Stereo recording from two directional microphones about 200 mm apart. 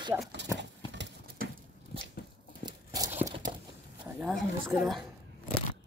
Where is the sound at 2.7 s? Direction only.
20° right (ahead or behind).